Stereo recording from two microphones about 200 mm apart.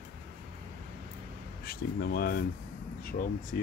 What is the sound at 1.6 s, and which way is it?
Speech, 50° left (ahead or behind).